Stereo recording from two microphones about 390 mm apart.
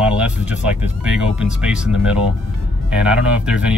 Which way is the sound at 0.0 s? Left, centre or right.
Centre.